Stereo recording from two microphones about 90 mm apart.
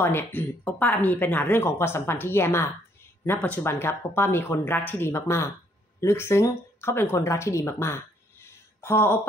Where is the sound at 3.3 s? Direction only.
15° left (ahead or behind).